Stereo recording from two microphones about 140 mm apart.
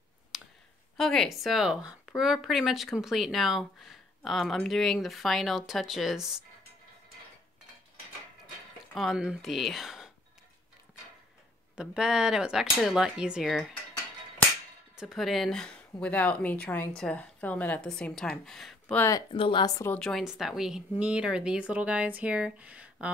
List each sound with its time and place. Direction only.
0.3 s clicking: centre (ahead or behind)
0.9 s a woman's voice: centre (ahead or behind)
8.9 s speech: centre (ahead or behind)
11.7 s a woman's voice: 5° right (ahead or behind)
15.0 s speech: centre (ahead or behind)
18.9 s speech: 20° left (ahead or behind)
19.3 s a woman's voice: 40° left (ahead or behind)
19.9 s a woman's voice: 5° left (ahead or behind)